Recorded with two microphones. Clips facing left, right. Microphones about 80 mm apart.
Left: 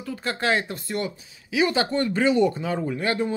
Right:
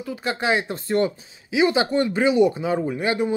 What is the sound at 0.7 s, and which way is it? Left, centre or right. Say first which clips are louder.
Speech: right 7 dB; right.